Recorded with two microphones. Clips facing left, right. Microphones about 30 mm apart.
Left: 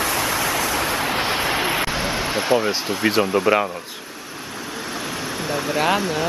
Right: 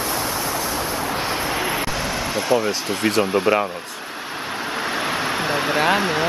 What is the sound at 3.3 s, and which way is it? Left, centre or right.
Speech, centre.